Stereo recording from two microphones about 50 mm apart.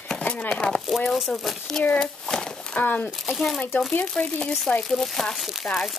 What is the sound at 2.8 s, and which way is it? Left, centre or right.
Speech, left.